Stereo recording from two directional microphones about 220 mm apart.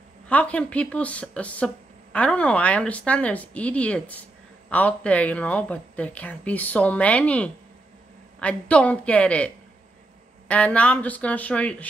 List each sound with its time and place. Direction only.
0.3 s speech: 5° left (ahead or behind)
10.5 s speech: 5° left (ahead or behind)